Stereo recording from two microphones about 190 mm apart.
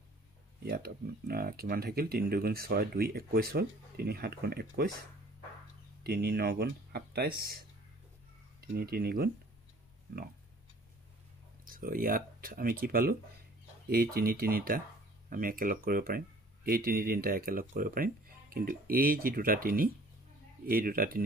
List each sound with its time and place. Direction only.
0.7 s speech: 55° right (ahead or behind)
6.0 s speech: 55° right (ahead or behind)
11.6 s speech: 50° right (ahead or behind)